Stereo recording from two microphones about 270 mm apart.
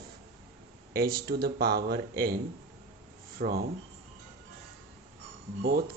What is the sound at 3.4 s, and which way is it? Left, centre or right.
Speech, right.